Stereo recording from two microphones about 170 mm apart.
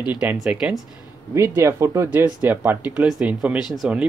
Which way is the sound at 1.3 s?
15° right (ahead or behind).